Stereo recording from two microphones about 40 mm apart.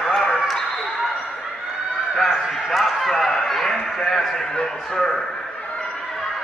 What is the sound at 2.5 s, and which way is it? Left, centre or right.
Basketball bounce, centre.